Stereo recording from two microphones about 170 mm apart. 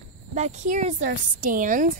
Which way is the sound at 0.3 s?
45° right (ahead or behind).